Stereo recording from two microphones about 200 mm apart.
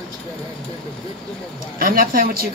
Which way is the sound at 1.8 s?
45° right (ahead or behind).